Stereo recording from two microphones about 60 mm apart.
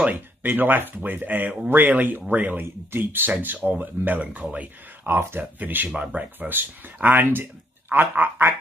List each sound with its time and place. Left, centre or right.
0.1 s speech: right
5.0 s speech: right